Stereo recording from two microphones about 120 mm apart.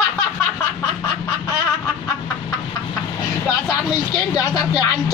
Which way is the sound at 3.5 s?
30° left (ahead or behind).